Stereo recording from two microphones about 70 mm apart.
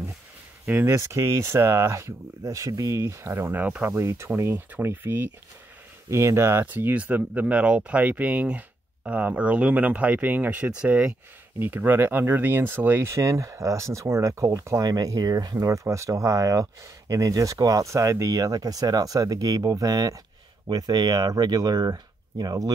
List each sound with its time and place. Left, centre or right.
0.7 s speech: right
0.9 s speech: right
3.0 s speech: right
3.5 s speech: right
3.9 s speech: right
6.0 s speech: right
6.6 s speech: right
11.6 s speech: right
14.8 s speech: right